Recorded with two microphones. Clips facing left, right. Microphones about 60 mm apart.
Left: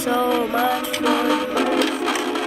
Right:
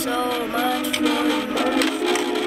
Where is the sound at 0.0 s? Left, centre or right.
Centre.